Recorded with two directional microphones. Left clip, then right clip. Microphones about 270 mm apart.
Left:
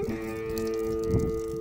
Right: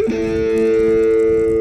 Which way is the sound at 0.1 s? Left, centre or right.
Right.